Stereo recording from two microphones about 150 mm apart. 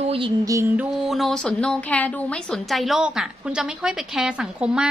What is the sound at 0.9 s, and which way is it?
A woman's voice, centre (ahead or behind).